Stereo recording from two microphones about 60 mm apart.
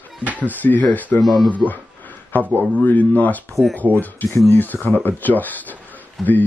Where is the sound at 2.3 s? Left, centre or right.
Left.